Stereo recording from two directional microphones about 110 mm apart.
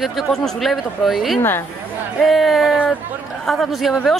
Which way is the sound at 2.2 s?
Centre (ahead or behind).